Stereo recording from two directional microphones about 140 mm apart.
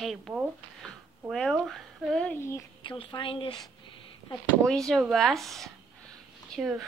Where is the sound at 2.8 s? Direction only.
35° left (ahead or behind).